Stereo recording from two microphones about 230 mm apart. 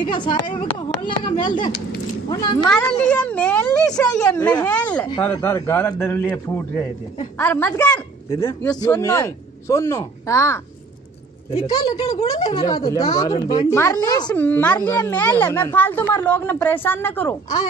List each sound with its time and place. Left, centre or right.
0.1 s speech: left
2.6 s a woman's voice: centre
7.3 s a woman's voice: centre
11.5 s a woman's voice: left; by 17.4 s centre